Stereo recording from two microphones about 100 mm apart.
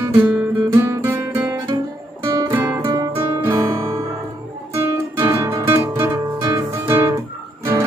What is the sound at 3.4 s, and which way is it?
Guitar, 20° right (ahead or behind).